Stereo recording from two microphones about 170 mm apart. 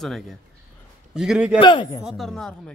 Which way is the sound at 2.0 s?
Centre (ahead or behind).